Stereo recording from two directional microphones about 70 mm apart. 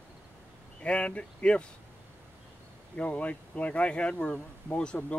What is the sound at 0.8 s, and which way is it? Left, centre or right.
Speech, centre.